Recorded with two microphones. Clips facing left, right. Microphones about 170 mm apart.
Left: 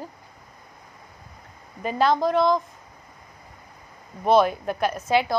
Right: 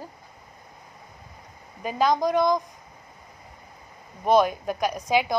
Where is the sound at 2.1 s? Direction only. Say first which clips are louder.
Left 1 dB; 15° right (ahead or behind).